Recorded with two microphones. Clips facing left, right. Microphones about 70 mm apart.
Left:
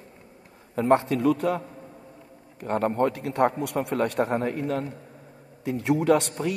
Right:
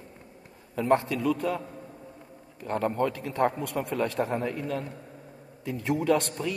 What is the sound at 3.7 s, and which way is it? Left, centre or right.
Speech, left.